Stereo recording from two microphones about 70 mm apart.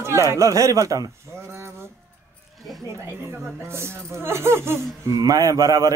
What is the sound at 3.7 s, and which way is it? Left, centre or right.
Speech, right.